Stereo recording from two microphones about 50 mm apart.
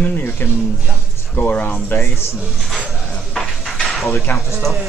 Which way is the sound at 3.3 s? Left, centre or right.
Centre.